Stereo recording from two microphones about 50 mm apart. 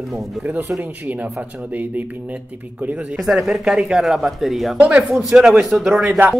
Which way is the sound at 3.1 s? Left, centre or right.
Centre.